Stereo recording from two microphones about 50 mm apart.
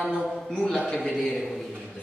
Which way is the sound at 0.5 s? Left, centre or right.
Centre.